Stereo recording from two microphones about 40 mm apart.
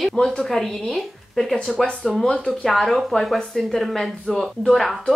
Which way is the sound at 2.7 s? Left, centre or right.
Centre.